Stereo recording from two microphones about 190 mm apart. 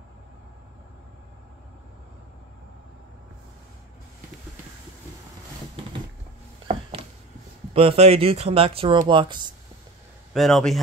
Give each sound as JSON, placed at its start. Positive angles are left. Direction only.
{"t": 6.7, "sound": "a sound", "side_deg": -30}
{"t": 7.7, "sound": "speech", "side_deg": -30}
{"t": 10.3, "sound": "speech", "side_deg": 0}